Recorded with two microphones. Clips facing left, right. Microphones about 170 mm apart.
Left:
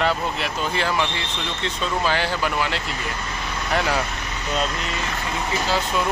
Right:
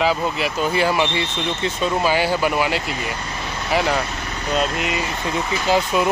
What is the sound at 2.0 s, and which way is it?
Speech, 10° right (ahead or behind).